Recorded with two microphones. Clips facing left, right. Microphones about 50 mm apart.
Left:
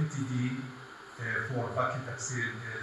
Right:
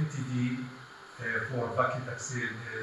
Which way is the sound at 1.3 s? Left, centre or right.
Centre.